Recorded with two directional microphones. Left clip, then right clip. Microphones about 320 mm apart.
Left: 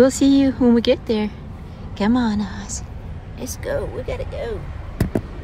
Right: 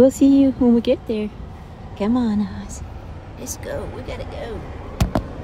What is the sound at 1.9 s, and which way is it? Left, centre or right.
Speech, left.